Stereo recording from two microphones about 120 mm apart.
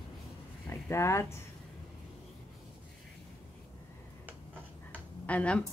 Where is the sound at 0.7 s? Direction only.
25° left (ahead or behind).